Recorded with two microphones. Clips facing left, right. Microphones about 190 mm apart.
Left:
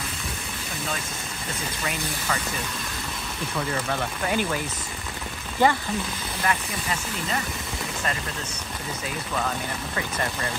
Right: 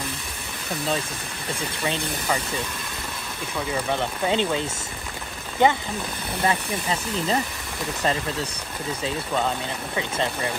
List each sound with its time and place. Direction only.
3.7 s speech: 20° right (ahead or behind)
9.9 s speech: 20° right (ahead or behind)